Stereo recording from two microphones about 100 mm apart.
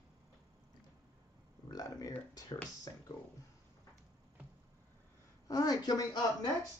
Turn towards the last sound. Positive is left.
turn(degrees=40)  # may be behind; listen again after turning